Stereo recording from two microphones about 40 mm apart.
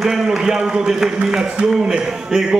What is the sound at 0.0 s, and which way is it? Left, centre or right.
A man's voice, centre.